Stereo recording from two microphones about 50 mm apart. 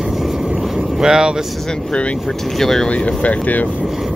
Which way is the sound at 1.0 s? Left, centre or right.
Centre.